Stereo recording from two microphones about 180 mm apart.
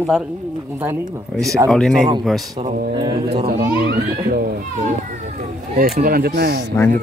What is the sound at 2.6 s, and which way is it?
Speech, 25° right (ahead or behind).